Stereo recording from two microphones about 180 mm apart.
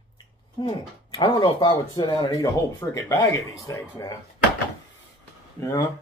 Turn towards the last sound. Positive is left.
turn(degrees=20)  # may be behind; listen again after turning